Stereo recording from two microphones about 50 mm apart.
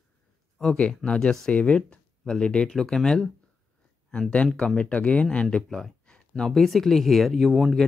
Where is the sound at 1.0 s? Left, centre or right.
Centre.